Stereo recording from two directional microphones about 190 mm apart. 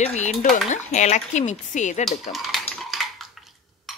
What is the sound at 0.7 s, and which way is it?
Speech, 40° left (ahead or behind).